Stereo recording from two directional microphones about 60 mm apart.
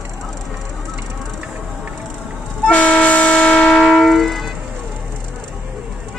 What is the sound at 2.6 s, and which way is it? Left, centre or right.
Vehicle, left.